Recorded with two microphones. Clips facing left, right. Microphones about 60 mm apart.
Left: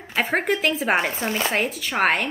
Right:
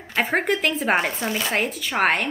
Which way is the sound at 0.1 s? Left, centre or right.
Centre.